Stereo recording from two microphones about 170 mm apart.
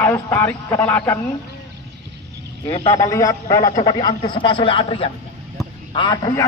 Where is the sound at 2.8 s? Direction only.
20° left (ahead or behind).